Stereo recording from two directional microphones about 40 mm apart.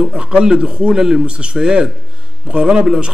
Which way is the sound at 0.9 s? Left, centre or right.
Centre.